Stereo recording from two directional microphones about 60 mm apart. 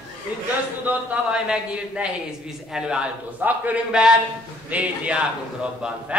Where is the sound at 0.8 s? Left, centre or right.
Right.